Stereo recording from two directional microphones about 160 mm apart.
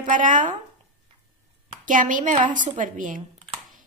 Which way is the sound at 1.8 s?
55° right (ahead or behind).